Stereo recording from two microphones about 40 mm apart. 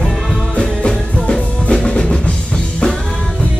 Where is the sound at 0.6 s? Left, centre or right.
Left.